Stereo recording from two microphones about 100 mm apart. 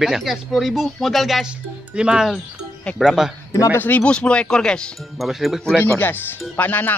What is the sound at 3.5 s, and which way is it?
Speech, 35° left (ahead or behind).